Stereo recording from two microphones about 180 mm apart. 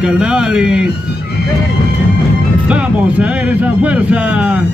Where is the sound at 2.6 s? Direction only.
5° right (ahead or behind).